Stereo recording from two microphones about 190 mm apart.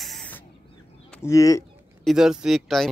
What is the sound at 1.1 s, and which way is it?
Speech, 15° left (ahead or behind).